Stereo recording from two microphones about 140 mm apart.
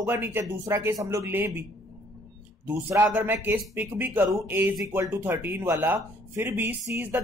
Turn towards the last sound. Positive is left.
turn(degrees=-15)  # may be behind; listen again after turning